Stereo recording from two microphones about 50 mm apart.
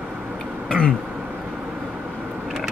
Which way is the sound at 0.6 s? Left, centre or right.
Centre.